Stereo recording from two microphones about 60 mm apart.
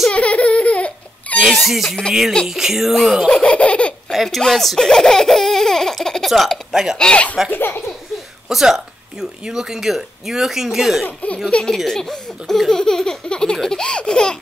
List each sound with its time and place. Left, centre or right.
0.1 s laughter: left
1.4 s speech: centre
3.4 s laughter: centre
4.1 s a sound: centre
4.4 s speech: centre
7.0 s speech: centre
7.5 s a sound: left
8.5 s speech: centre
11.7 s speech: centre